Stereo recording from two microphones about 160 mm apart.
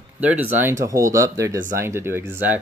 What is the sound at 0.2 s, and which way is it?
Speech, 10° right (ahead or behind).